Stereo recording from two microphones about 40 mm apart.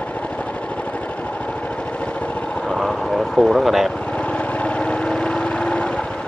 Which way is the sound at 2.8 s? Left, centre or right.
Centre.